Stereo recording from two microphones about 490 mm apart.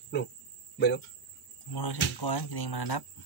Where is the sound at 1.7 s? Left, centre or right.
Left.